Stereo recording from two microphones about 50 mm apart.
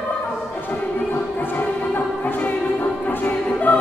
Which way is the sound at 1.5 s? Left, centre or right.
Left.